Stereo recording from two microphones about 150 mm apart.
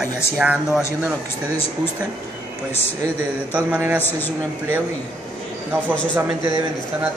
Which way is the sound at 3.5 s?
10° right (ahead or behind).